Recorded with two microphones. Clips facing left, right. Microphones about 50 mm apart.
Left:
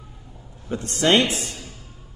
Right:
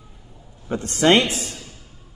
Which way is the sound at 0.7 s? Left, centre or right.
Right.